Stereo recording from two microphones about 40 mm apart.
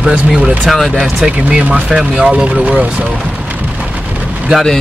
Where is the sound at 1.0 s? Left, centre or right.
Centre.